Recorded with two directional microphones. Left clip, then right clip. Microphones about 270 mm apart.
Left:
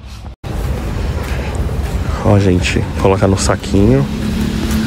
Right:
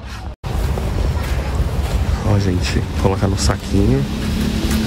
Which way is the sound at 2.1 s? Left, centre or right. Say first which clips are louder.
Left 9 dB; centre.